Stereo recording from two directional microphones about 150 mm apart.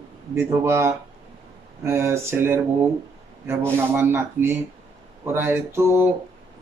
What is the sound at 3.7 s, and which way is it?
Speech, 15° right (ahead or behind).